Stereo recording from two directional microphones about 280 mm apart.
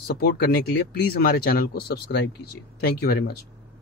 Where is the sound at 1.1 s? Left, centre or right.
Left.